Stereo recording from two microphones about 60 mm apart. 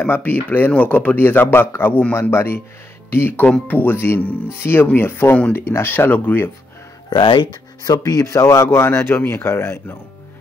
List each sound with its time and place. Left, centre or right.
0.0 s speech: left
2.3 s speech: left
7.8 s speech: left
8.6 s speech: left